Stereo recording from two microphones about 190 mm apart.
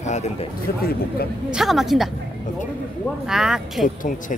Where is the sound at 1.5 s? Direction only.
Centre (ahead or behind).